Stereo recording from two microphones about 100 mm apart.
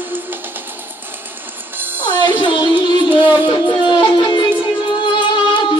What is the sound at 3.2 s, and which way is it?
Music, 20° right (ahead or behind).